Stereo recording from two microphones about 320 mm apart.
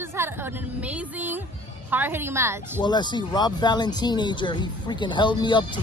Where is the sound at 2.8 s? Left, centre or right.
Centre.